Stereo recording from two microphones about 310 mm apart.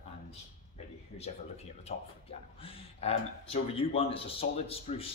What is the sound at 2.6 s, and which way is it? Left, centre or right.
Speech, centre.